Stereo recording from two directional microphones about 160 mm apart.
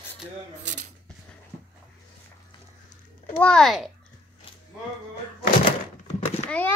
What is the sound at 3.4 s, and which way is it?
Speech, 5° left (ahead or behind).